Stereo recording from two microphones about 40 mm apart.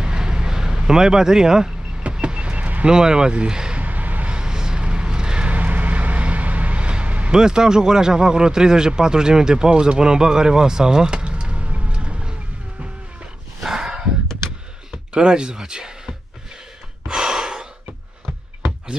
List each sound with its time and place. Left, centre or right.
0.0 s a sound: centre
2.1 s vehicle: right
2.9 s speech: centre
3.7 s a sound: right
4.3 s a sound: right
5.5 s vehicle: right
7.3 s a man's voice: centre
13.6 s snort: centre
15.1 s speech: right
17.1 s gasp: centre